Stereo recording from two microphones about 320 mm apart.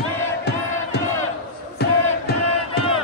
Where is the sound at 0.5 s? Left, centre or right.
Left.